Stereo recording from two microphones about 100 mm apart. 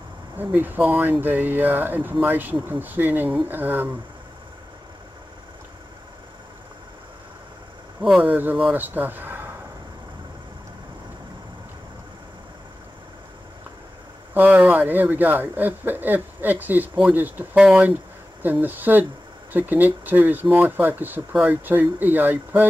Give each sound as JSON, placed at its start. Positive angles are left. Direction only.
{"t": 0.4, "sound": "speech", "side_deg": -20}
{"t": 8.0, "sound": "speech", "side_deg": -5}
{"t": 8.3, "sound": "speech", "side_deg": -15}
{"t": 14.3, "sound": "speech", "side_deg": -20}